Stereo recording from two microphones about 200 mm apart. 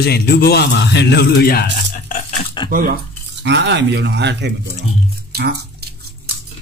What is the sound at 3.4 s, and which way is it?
Speech, 60° right (ahead or behind).